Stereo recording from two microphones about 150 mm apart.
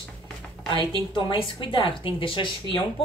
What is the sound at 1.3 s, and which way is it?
Speech, 35° left (ahead or behind).